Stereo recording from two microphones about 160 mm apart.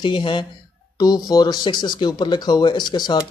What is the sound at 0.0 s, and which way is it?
Speech, 30° left (ahead or behind).